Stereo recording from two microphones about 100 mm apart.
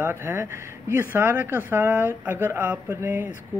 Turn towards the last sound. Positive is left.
turn(degrees=-20)  # may be behind; listen again after turning